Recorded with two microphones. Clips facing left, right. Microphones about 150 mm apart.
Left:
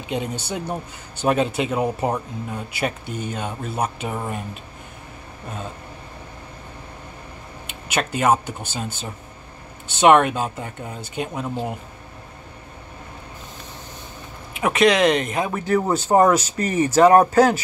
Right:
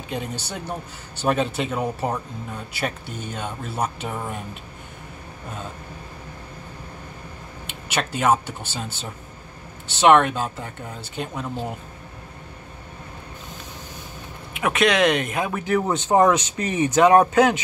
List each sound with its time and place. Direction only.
0.1 s speech: centre (ahead or behind)
7.9 s speech: centre (ahead or behind)
9.9 s speech: 5° left (ahead or behind)
14.5 s speech: centre (ahead or behind)
16.5 s speech: 15° right (ahead or behind)
17.2 s speech: 5° left (ahead or behind)